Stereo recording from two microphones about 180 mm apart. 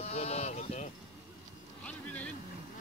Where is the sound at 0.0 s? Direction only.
35° left (ahead or behind).